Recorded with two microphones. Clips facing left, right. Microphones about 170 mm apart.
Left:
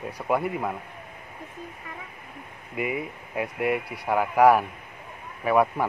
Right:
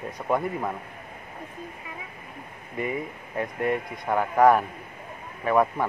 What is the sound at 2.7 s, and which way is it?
Speech, 10° left (ahead or behind).